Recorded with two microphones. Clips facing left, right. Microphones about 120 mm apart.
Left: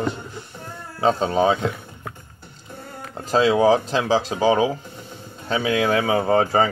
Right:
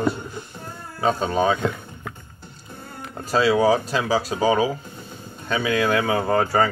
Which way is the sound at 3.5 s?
25° left (ahead or behind).